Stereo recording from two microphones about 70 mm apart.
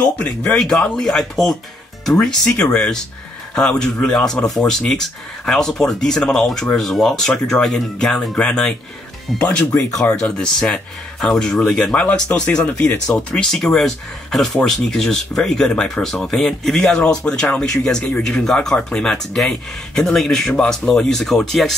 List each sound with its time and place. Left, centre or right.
0.0 s speech: centre
0.6 s speech: centre